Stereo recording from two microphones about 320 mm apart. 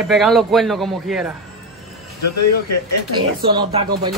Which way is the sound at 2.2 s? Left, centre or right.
Left.